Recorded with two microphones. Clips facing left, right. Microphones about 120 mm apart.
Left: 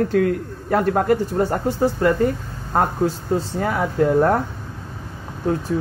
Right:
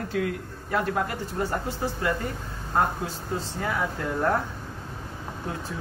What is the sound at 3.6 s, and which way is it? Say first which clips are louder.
Speech: left 9 dB; 45° left (ahead or behind).